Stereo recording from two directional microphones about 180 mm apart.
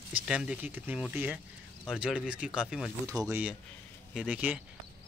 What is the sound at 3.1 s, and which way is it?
Speech, 15° right (ahead or behind).